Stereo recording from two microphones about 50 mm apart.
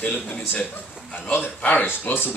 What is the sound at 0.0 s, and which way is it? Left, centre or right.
Speech, left.